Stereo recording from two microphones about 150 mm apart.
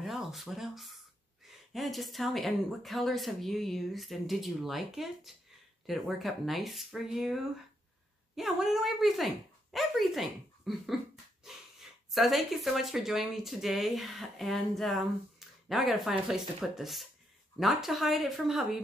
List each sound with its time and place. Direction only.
0.0 s speech: centre (ahead or behind)